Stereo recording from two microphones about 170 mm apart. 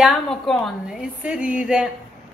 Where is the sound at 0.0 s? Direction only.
Centre (ahead or behind).